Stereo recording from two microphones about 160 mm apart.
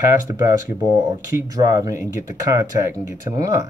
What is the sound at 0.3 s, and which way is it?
Speech, 20° right (ahead or behind).